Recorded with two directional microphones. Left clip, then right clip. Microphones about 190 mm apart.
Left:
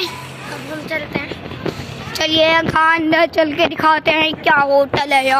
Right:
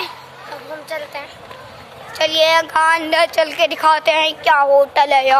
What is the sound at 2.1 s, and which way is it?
A woman's voice, 10° right (ahead or behind).